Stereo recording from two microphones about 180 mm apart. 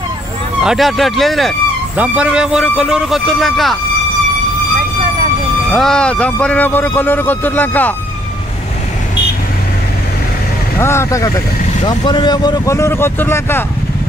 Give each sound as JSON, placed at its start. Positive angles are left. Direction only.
{"t": 0.7, "sound": "speech", "side_deg": 0}
{"t": 5.7, "sound": "speech", "side_deg": 0}
{"t": 10.8, "sound": "speech", "side_deg": 15}